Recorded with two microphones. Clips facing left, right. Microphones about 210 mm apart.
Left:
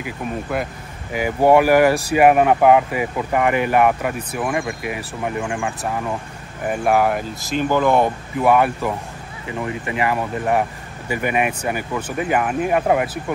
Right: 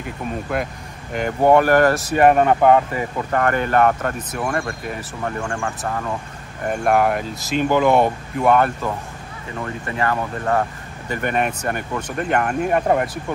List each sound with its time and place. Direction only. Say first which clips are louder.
0.0 s speech: left 1 dB; centre (ahead or behind)
6.6 s speech: even; 5° left (ahead or behind)
7.7 s speech: right 1 dB; 15° right (ahead or behind)
8.4 s speech: left 1 dB; 5° left (ahead or behind)